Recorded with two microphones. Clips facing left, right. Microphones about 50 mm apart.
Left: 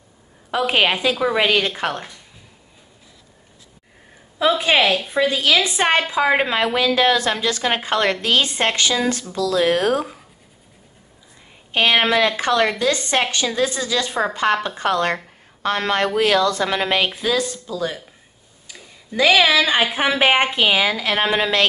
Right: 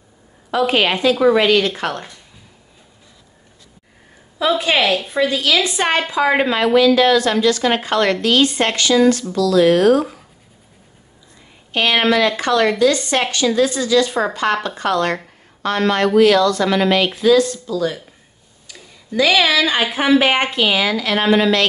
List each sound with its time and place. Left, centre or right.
0.5 s a woman's voice: centre
4.5 s a woman's voice: centre
11.7 s a woman's voice: centre